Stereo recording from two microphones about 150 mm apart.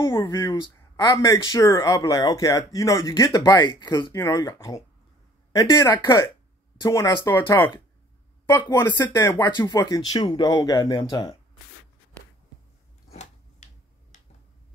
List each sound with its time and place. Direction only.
0.2 s a man's voice: 20° left (ahead or behind)
8.5 s a man's voice: 15° left (ahead or behind)
13.1 s a sound: 50° left (ahead or behind)